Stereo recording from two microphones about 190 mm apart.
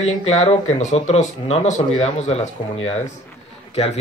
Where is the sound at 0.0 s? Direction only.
35° left (ahead or behind).